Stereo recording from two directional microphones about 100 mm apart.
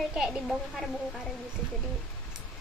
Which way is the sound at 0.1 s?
10° right (ahead or behind).